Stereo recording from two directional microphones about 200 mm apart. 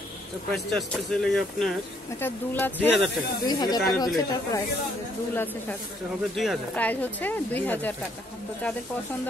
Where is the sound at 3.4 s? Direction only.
20° left (ahead or behind).